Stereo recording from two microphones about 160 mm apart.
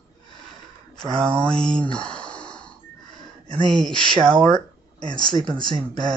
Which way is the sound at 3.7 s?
Centre (ahead or behind).